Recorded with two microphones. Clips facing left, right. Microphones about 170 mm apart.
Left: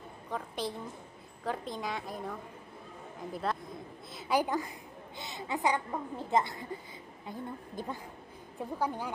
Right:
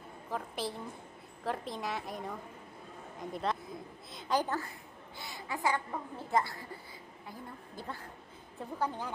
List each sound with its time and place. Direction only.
0.3 s a woman's voice: 5° right (ahead or behind)